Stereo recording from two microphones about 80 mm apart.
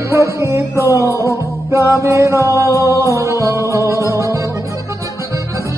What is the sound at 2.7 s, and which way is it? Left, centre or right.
Music, left.